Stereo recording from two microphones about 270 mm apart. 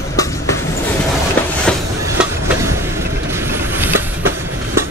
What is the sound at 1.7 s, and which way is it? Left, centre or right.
Train, centre.